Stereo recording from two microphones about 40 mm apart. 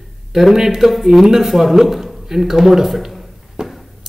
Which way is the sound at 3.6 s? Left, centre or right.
Right.